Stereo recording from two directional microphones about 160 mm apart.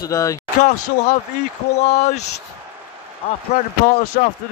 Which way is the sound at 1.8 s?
45° left (ahead or behind).